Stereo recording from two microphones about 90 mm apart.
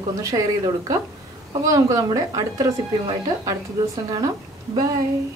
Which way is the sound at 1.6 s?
40° right (ahead or behind).